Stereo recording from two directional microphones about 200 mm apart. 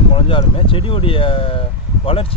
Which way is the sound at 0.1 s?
25° left (ahead or behind).